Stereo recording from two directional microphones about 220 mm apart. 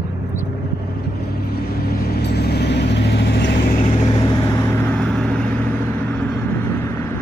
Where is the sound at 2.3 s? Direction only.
45° left (ahead or behind).